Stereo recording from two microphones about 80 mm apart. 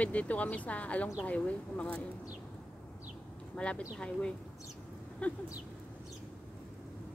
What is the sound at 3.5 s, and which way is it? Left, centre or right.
Speech, centre.